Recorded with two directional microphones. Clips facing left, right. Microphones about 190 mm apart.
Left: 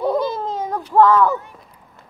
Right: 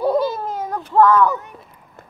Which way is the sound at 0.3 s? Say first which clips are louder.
Left 1 dB; 20° left (ahead or behind).